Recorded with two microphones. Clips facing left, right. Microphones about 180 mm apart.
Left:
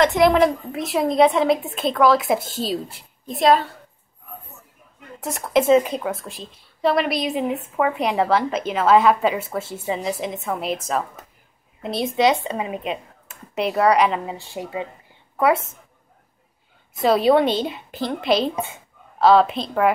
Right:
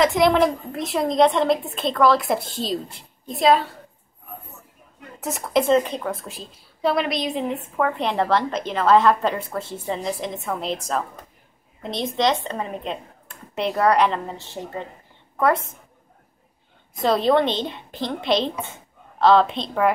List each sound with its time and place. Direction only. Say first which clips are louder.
0.0 s a woman's voice: left 2 dB; centre (ahead or behind)
5.2 s a woman's voice: left 2 dB; centre (ahead or behind)
17.0 s a woman's voice: left 2 dB; 5° left (ahead or behind)